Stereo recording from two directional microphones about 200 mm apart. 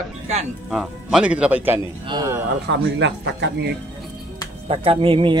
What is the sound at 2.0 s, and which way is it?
Speech, 20° right (ahead or behind).